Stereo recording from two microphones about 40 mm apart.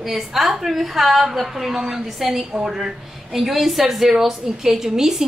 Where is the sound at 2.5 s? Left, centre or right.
Centre.